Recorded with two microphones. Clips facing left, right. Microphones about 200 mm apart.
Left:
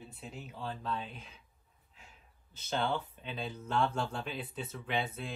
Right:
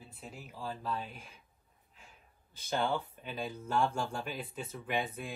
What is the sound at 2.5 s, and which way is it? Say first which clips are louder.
Speech: right 1 dB; 10° right (ahead or behind).